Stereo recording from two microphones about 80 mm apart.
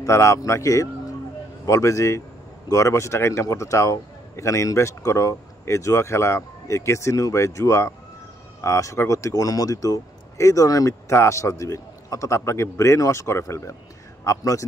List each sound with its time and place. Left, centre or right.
0.0 s speech: left